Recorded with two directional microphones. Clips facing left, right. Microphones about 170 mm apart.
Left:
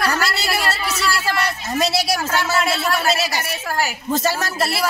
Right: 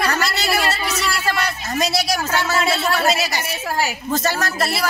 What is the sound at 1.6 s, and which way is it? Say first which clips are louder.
Speech: left 1 dB; 25° left (ahead or behind).